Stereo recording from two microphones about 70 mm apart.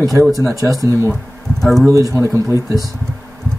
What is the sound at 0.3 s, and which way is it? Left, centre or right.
Speech, right.